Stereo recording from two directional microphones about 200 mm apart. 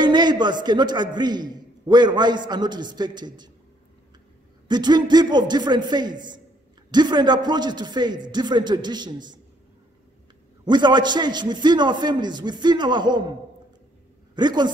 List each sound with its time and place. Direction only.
0.0 s a man's voice: 20° right (ahead or behind)
4.6 s a man's voice: 20° right (ahead or behind)
10.6 s a man's voice: 20° right (ahead or behind)
14.3 s a woman's voice: 20° right (ahead or behind)